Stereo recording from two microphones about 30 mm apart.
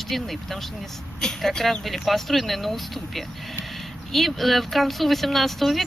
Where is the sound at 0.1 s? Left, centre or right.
Centre.